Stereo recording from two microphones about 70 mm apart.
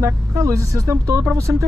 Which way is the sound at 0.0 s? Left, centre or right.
Right.